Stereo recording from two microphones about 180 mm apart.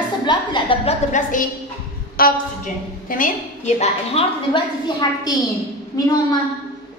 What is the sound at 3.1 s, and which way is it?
A woman's voice, 45° left (ahead or behind).